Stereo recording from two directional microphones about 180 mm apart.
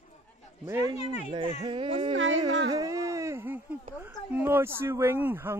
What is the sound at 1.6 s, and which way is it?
Speech, 30° right (ahead or behind).